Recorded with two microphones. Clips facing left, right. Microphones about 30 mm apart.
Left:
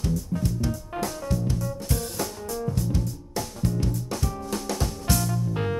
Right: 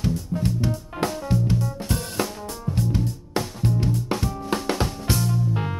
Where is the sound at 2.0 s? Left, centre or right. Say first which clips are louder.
Right 3 dB; right.